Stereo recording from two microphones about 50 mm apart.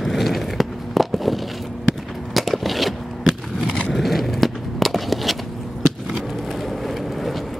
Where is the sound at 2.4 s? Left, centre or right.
Centre.